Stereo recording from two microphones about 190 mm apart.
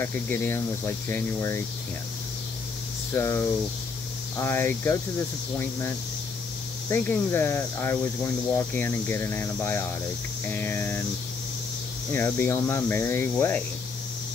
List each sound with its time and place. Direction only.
0.0 s speech: 10° left (ahead or behind)
3.1 s speech: 15° left (ahead or behind)
12.1 s speech: 10° left (ahead or behind)